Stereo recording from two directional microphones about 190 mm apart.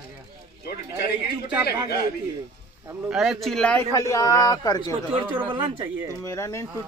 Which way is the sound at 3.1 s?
Centre (ahead or behind).